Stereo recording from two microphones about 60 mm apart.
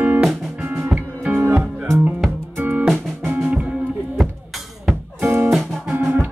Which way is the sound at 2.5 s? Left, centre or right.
Right.